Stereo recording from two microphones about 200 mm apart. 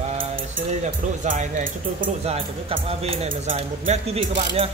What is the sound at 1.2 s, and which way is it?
Speech, 40° right (ahead or behind).